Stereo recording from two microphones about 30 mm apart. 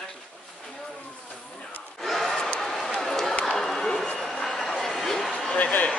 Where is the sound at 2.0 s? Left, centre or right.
Centre.